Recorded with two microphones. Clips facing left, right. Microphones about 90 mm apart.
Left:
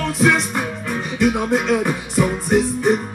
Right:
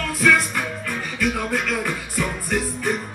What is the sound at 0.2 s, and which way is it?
Music, 20° left (ahead or behind).